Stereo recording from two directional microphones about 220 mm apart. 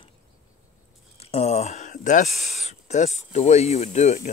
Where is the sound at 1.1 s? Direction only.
30° left (ahead or behind).